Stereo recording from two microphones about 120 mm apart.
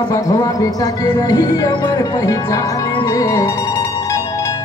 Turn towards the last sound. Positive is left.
turn(degrees=25)  # may be behind; listen again after turning